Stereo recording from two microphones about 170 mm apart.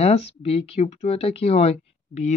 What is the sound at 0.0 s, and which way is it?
Speech, 35° left (ahead or behind).